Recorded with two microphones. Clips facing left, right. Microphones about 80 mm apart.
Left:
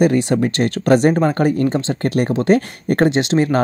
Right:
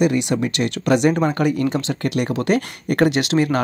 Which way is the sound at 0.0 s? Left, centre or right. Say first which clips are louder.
Left 3 dB; left.